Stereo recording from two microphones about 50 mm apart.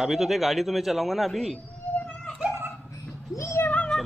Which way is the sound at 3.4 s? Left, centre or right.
Left.